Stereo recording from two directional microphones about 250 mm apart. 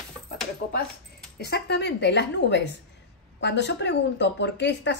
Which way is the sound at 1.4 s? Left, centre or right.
Left.